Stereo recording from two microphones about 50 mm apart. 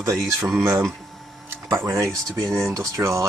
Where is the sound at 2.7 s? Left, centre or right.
Right.